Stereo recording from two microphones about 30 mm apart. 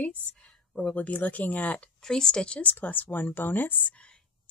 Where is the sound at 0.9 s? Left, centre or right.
Left.